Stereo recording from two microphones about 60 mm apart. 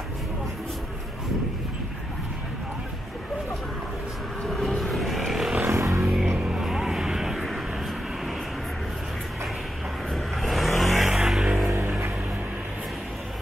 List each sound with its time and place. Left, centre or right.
4.5 s vehicle: centre
5.6 s music: right
6.0 s music: centre
6.3 s vehicle: centre
6.6 s vehicle: centre
10.1 s vehicle: centre